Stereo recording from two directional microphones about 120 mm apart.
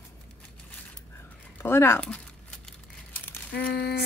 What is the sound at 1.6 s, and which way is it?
Speech, 20° left (ahead or behind).